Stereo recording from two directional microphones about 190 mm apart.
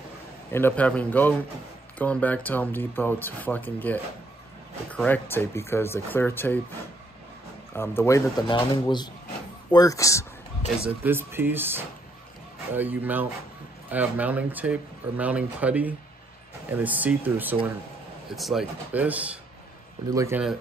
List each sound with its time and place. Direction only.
0.5 s speech: 10° left (ahead or behind)
7.7 s speech: 15° left (ahead or behind)
10.8 s speech: 10° right (ahead or behind)